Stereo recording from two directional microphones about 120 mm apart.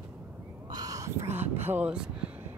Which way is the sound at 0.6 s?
30° right (ahead or behind).